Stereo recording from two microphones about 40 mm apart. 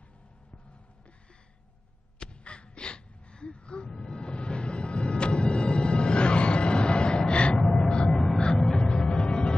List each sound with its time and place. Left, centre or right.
2.1 s a sound: left
3.9 s music: centre
7.5 s gasp: centre
7.9 s music: centre